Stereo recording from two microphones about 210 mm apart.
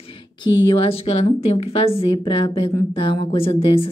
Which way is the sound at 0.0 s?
25° left (ahead or behind).